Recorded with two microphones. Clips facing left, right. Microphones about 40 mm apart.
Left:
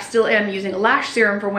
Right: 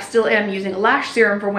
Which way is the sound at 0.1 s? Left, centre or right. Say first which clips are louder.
Even; centre.